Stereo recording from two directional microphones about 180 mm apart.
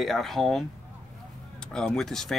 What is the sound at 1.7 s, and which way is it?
Speech, 5° left (ahead or behind).